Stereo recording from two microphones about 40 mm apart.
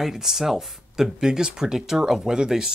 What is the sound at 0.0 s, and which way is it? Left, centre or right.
Speech, centre.